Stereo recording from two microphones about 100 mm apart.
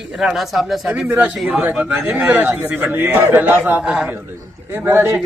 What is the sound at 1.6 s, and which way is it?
A man's voice, 15° right (ahead or behind).